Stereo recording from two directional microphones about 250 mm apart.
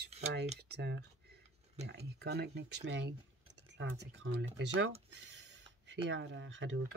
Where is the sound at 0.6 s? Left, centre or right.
Right.